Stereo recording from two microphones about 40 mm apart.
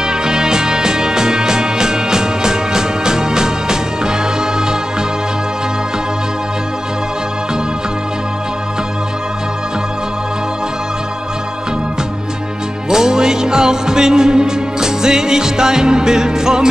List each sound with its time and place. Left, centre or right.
0.0 s music: centre
12.9 s music: centre